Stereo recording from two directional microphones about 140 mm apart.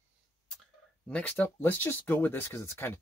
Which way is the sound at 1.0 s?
10° left (ahead or behind).